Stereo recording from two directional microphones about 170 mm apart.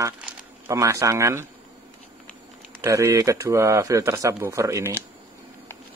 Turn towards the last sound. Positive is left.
turn(degrees=-15)  # may be behind; listen again after turning